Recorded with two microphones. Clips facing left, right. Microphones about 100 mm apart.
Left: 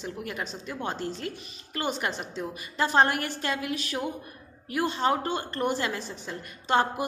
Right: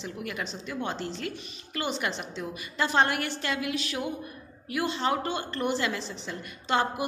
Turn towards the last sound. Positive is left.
turn(degrees=40)  # may be behind; listen again after turning